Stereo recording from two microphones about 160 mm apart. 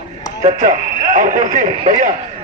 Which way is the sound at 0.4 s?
45° right (ahead or behind).